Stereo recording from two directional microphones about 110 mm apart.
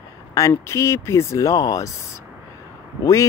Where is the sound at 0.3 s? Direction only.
30° left (ahead or behind).